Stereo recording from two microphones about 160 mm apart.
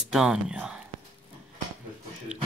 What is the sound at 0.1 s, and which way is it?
Speech, 5° right (ahead or behind).